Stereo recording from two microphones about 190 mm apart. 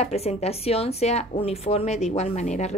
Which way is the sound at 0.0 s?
35° left (ahead or behind).